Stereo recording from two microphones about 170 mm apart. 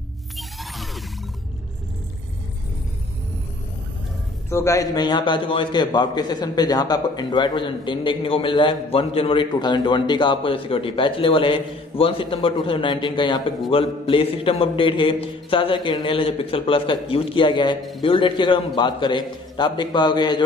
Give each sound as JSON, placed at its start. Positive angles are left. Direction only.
{"t": 4.5, "sound": "a man's voice", "side_deg": 15}